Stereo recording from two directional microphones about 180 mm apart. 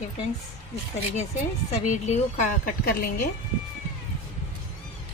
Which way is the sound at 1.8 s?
40° left (ahead or behind).